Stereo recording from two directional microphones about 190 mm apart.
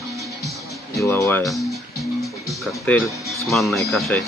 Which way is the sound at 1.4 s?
Centre (ahead or behind).